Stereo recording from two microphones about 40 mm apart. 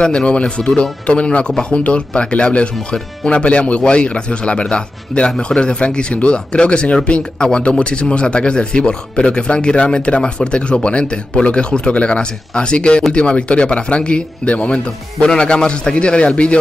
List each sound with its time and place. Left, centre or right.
0.0 s speech: left
15.1 s speech: centre